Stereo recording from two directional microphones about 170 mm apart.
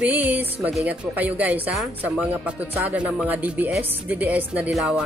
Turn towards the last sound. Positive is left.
turn(degrees=0)  # may be behind; listen again after turning